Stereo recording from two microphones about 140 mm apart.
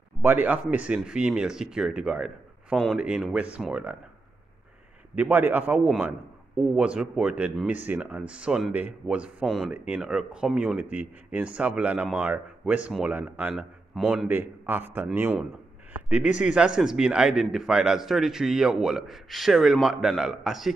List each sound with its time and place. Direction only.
0.2 s a man's voice: 15° right (ahead or behind)
5.1 s speech: 15° right (ahead or behind)
14.2 s a man's voice: 15° right (ahead or behind)